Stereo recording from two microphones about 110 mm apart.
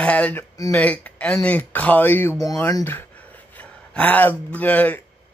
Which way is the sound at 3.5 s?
15° left (ahead or behind).